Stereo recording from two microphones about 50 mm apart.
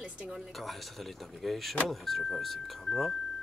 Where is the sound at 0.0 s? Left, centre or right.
Centre.